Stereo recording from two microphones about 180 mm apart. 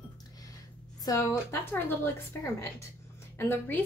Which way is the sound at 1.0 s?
15° left (ahead or behind).